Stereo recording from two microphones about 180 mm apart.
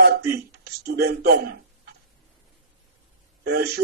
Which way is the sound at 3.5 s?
65° right (ahead or behind).